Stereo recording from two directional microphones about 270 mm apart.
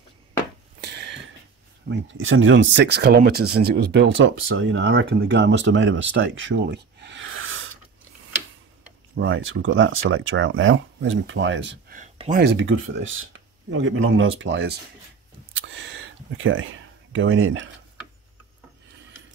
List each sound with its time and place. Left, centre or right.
0.7 s a sound: right
1.9 s speech: right
9.2 s speech: right
11.9 s speech: right